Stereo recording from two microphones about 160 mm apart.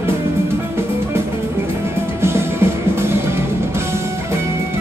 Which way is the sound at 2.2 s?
15° right (ahead or behind).